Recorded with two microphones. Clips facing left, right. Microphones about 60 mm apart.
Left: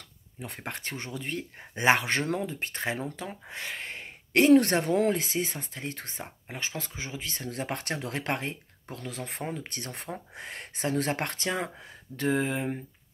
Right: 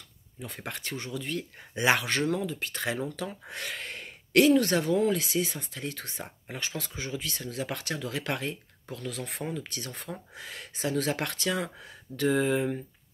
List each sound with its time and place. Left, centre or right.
0.4 s speech: left
4.5 s speech: left
5.1 s speech: left